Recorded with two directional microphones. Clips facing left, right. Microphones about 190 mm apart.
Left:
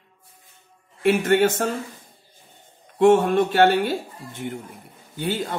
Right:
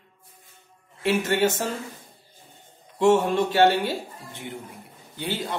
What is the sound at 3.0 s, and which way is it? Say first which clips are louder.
Speech: left 3 dB; 55° left (ahead or behind).